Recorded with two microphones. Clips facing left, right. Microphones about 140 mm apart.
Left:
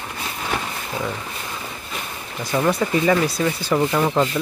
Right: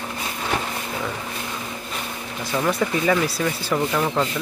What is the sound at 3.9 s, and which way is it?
Speech, 15° left (ahead or behind).